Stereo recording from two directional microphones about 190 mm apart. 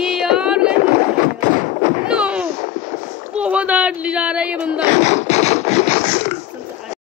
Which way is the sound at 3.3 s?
5° right (ahead or behind).